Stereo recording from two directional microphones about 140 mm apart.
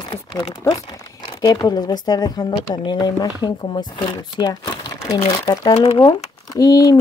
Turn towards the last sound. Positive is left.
turn(degrees=30)  # may be behind; listen again after turning